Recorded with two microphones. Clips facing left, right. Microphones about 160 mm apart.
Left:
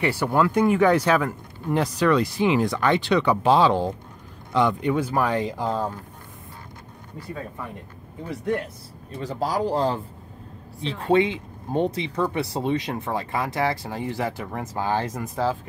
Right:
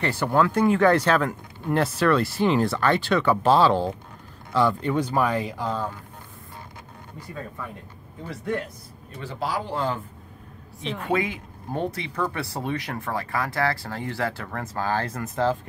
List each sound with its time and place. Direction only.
0.0 s speech: 10° left (ahead or behind)
5.3 s speech: 20° left (ahead or behind)
5.6 s speech: 35° left (ahead or behind)
9.2 s speech: 40° left (ahead or behind)
11.0 s speech: 25° left (ahead or behind); by 15.5 s 10° left (ahead or behind)